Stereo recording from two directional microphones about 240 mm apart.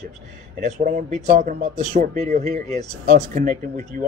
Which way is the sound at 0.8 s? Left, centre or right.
Right.